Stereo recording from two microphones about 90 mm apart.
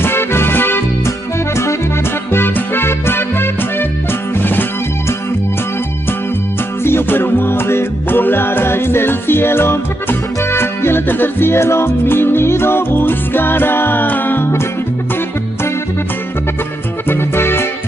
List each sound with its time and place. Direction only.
0.0 s music: 25° left (ahead or behind)
2.3 s music: 25° left (ahead or behind)
6.8 s music: 25° left (ahead or behind)
17.1 s music: 25° left (ahead or behind)